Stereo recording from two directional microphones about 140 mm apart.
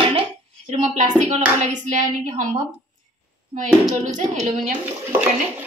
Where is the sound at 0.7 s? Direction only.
60° right (ahead or behind).